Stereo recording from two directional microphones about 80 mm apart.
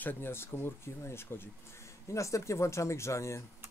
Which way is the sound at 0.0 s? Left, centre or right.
Left.